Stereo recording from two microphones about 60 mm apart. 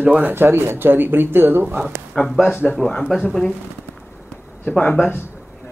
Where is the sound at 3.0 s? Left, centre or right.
Centre.